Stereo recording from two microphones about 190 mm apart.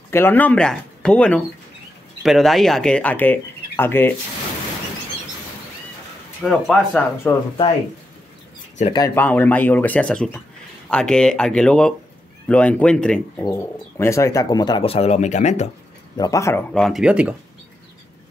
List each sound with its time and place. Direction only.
0.1 s speech: 10° left (ahead or behind)
6.4 s speech: 5° left (ahead or behind)
8.9 s speech: 15° left (ahead or behind); by 15.7 s 40° left (ahead or behind)
16.2 s speech: 15° left (ahead or behind)
16.7 s speech: centre (ahead or behind)